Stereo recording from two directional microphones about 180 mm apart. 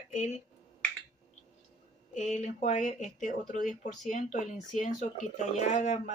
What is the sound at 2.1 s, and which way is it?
Speech, 40° left (ahead or behind).